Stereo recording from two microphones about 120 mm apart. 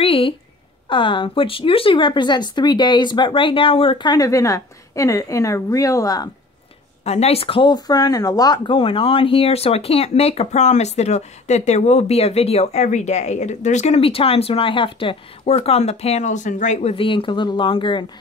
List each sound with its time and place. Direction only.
0.0 s a sound: 50° left (ahead or behind)
0.8 s speech: 45° left (ahead or behind)
7.1 s speech: 60° left (ahead or behind); by 16.9 s 85° left
16.9 s speech: 50° left (ahead or behind)